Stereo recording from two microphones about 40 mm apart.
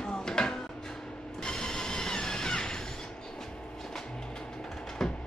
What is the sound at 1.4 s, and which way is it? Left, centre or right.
Printer, centre.